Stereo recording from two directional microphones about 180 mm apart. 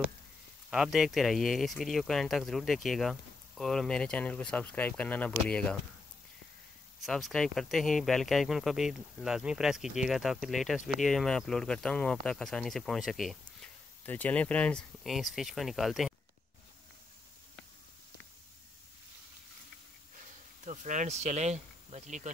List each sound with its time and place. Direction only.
0.7 s speech: centre (ahead or behind)
7.1 s speech: centre (ahead or behind)
20.2 s insect: 45° right (ahead or behind)